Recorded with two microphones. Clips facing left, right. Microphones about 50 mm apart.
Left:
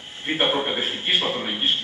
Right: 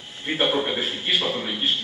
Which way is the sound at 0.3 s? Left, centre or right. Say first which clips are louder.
Even; left.